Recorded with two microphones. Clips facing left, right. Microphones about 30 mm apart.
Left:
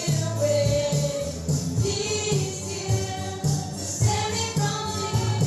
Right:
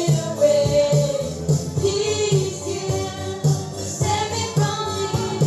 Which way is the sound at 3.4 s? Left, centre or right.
Right.